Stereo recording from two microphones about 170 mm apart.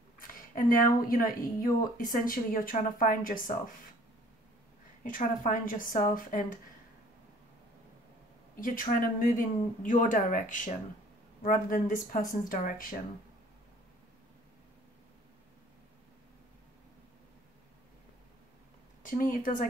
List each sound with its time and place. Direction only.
0.2 s a sound: 55° left (ahead or behind)
1.0 s speech: 55° left (ahead or behind)
5.0 s speech: 50° left (ahead or behind)
8.5 s speech: 55° left (ahead or behind)
19.0 s speech: 55° left (ahead or behind)